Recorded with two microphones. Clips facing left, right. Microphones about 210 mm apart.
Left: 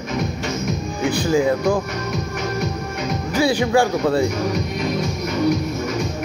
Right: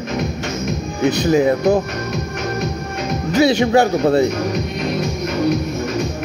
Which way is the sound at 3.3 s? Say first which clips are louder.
Right 4 dB; 25° right (ahead or behind).